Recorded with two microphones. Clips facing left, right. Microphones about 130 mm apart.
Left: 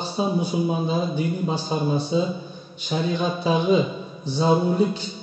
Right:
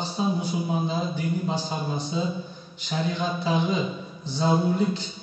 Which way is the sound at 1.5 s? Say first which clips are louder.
Left 5 dB; 15° left (ahead or behind).